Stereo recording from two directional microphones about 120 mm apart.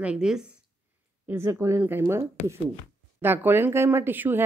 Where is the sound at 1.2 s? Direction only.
20° right (ahead or behind).